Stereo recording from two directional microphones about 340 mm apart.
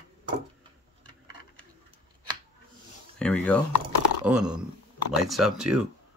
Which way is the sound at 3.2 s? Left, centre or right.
Centre.